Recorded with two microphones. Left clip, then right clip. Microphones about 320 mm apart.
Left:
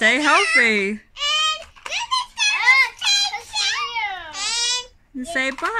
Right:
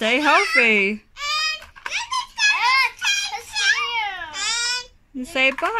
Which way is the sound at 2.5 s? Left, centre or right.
Centre.